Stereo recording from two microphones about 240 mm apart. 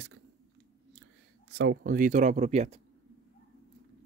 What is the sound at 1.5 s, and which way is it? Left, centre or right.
Speech, right.